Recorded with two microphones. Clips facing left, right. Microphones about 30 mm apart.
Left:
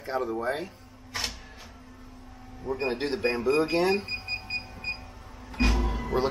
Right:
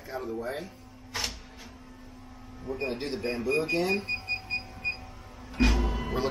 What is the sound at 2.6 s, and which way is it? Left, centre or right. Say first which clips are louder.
Speech: left 4 dB; centre.